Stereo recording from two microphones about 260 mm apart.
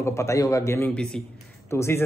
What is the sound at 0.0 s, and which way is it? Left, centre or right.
A man's voice, centre.